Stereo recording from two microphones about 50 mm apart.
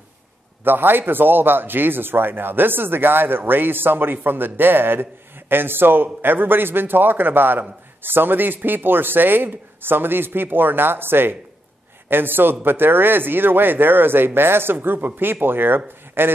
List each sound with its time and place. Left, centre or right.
0.7 s a man's voice: right